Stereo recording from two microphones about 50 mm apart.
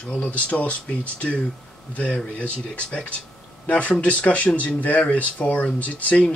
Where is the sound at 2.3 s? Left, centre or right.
Left.